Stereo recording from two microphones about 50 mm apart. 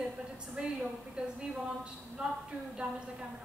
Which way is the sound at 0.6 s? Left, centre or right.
Centre.